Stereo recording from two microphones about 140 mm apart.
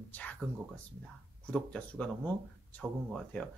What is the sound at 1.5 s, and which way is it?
Speech, 10° left (ahead or behind).